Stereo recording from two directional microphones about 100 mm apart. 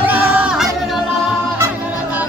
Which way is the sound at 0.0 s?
15° right (ahead or behind).